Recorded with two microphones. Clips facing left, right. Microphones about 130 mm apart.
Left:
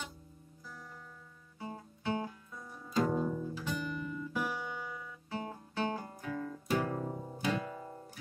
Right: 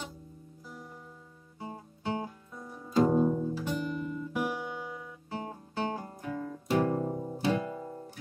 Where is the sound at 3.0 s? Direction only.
30° right (ahead or behind).